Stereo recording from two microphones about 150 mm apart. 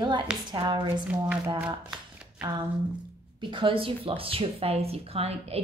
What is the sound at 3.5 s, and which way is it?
Speech, 35° right (ahead or behind).